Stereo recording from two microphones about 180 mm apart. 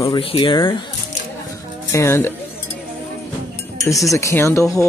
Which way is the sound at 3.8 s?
15° left (ahead or behind).